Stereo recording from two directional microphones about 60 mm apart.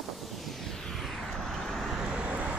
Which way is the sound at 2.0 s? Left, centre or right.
Centre.